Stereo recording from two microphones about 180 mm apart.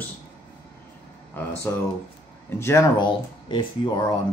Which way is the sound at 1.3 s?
10° left (ahead or behind).